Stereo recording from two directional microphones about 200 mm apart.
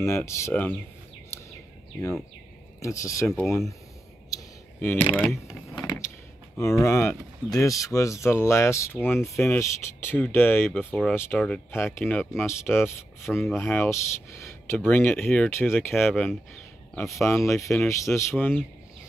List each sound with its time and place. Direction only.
0.0 s speech: 15° left (ahead or behind)
2.0 s speech: 15° left (ahead or behind)
4.3 s a sound: 10° left (ahead or behind)
5.1 s speech: 5° left (ahead or behind)
5.5 s power windows: 15° left (ahead or behind)
6.5 s speech: 15° left (ahead or behind)
15.9 s speech: centre (ahead or behind)